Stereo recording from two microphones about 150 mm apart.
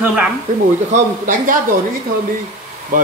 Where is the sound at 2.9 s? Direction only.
65° right (ahead or behind).